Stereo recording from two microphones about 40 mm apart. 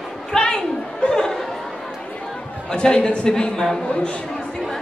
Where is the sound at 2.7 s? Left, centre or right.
Left.